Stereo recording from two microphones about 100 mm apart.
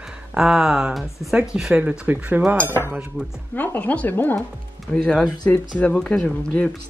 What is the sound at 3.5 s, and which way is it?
Speech, 15° left (ahead or behind).